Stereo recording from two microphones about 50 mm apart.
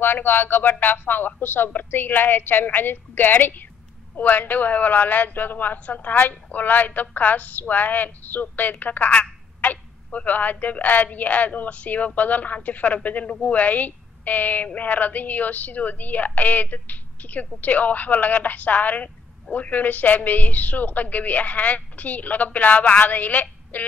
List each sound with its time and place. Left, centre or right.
0.0 s a woman's voice: left